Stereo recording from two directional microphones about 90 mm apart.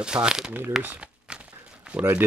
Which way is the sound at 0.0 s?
10° right (ahead or behind).